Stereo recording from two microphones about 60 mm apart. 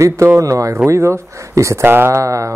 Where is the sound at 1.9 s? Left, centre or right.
Right.